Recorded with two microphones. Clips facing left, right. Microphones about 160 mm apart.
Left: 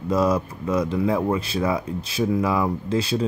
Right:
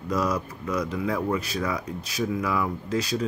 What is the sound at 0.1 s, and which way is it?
Speech, 25° left (ahead or behind).